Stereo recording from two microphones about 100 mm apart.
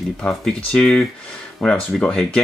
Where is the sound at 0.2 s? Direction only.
10° left (ahead or behind).